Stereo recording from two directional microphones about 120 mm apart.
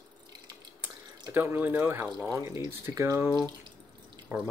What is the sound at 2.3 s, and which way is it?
Speech, 25° right (ahead or behind).